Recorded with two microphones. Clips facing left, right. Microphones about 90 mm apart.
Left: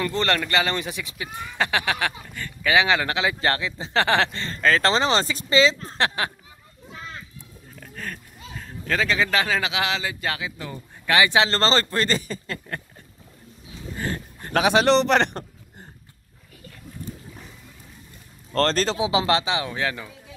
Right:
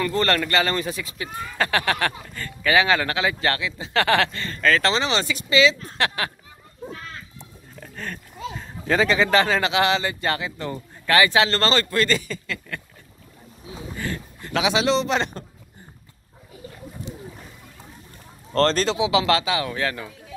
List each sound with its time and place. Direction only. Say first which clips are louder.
0.0 s speech: right 2 dB; 20° left (ahead or behind)
7.8 s speech: right 1 dB; centre (ahead or behind)
11.1 s speech: right 1 dB; 20° left (ahead or behind); by 12.8 s 35° left (ahead or behind)
13.9 s speech: left 2 dB; 35° left (ahead or behind); by 15.4 s 65° left (ahead or behind)
18.7 s speech: right 2 dB; 40° left (ahead or behind); by 20.1 s 15° left (ahead or behind)